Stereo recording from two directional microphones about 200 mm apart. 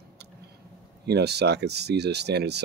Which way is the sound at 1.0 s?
55° right (ahead or behind).